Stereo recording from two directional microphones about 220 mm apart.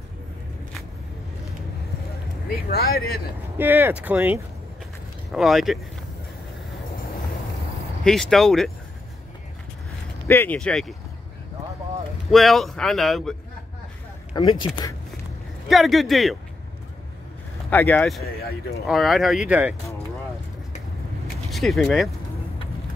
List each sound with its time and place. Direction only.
2.5 s speech: 45° left (ahead or behind)
3.5 s speech: 10° right (ahead or behind)
8.0 s speech: centre (ahead or behind)
10.2 s speech: 10° left (ahead or behind)
12.3 s speech: centre (ahead or behind)
14.3 s speech: 20° left (ahead or behind)
15.7 s speech: centre (ahead or behind)
17.6 s speech: 10° left (ahead or behind)
21.5 s speech: centre (ahead or behind)